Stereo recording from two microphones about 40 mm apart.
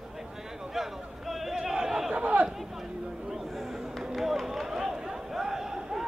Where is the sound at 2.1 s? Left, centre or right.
Right.